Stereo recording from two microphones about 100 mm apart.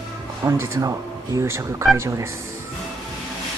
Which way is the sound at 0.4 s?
30° right (ahead or behind).